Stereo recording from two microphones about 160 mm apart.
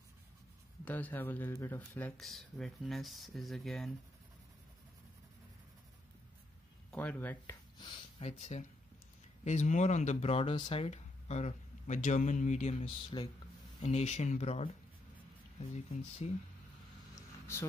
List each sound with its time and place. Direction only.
0.8 s speech: 10° left (ahead or behind)
6.9 s speech: 10° left (ahead or behind)
7.8 s a sound: 30° left (ahead or behind)
8.3 s speech: 45° left (ahead or behind)
13.1 s speech: 35° left (ahead or behind)
13.8 s speech: 45° left (ahead or behind)
16.2 s speech: 40° left (ahead or behind)
17.1 s a sound: 15° left (ahead or behind)